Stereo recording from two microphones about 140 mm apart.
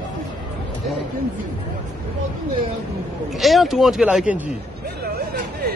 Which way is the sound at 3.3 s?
Centre (ahead or behind).